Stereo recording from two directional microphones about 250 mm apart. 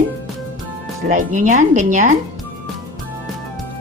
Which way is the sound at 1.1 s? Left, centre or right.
Right.